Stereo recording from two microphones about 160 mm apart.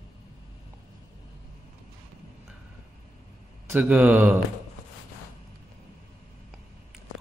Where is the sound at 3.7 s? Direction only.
10° right (ahead or behind).